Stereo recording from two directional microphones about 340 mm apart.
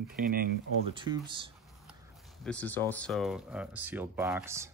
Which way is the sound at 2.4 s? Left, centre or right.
Centre.